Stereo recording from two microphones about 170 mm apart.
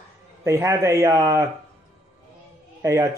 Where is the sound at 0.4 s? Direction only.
15° right (ahead or behind).